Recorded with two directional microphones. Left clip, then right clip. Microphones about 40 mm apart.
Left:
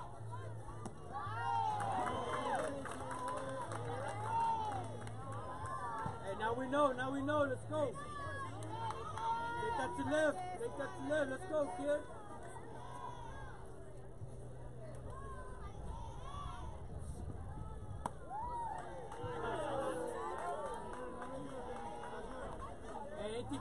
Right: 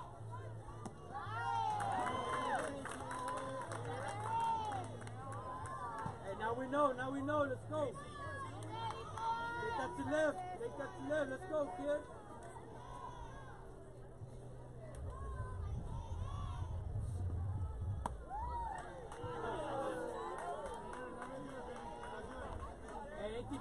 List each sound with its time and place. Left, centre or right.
1.2 s crowd: right
3.5 s music: right
4.4 s crowd: right
5.5 s music: left
6.5 s speech: left
7.8 s a sound: centre
8.8 s run: centre
9.8 s speech: left
18.5 s a sound: right
19.4 s music: left
20.1 s crowd: left
20.8 s crowd: right
23.1 s chatter: left